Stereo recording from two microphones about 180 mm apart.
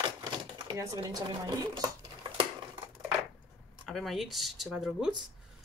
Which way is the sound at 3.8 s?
Centre (ahead or behind).